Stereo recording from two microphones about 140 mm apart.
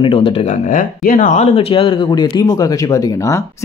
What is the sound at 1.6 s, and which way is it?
Speech, 40° left (ahead or behind).